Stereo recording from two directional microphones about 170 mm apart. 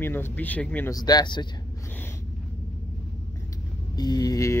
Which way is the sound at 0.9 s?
25° left (ahead or behind).